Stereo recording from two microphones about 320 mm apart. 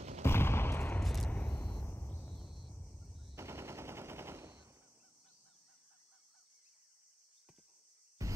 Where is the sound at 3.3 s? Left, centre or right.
Centre.